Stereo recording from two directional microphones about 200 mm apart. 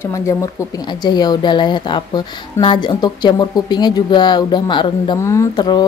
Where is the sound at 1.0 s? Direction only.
20° left (ahead or behind).